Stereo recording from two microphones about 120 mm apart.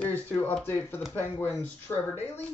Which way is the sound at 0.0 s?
15° left (ahead or behind).